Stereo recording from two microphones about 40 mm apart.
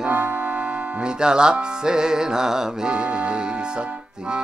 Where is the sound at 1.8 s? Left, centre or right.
Centre.